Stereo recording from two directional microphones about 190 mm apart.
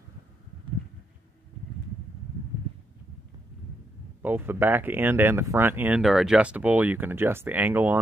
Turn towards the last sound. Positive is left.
turn(degrees=-10)  # may be behind; listen again after turning